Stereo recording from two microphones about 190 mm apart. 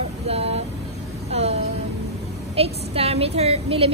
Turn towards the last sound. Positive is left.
turn(degrees=-30)  # may be behind; listen again after turning